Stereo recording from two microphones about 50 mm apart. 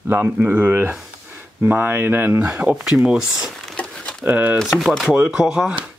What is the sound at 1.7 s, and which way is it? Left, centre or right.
Speech, right.